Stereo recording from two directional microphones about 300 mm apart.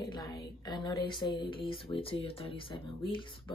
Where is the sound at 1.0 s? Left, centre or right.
Centre.